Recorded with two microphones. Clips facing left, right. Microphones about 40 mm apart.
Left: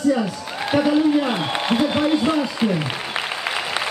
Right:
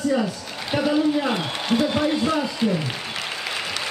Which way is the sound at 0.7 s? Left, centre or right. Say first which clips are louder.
Left 4 dB; centre.